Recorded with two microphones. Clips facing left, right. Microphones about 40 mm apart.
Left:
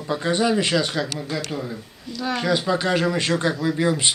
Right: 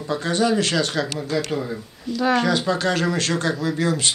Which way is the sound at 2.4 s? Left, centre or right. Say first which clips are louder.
Right 1 dB; centre.